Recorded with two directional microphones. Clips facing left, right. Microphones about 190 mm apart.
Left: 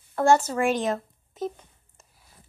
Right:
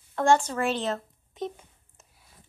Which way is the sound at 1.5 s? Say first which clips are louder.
Right 1 dB; centre (ahead or behind).